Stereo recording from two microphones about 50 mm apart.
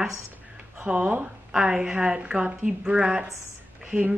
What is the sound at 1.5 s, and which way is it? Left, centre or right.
A woman's voice, centre.